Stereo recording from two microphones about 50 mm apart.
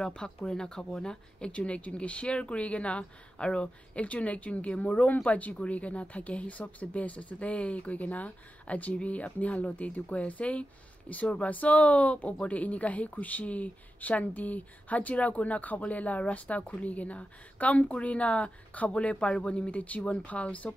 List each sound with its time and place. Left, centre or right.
0.0 s speech: centre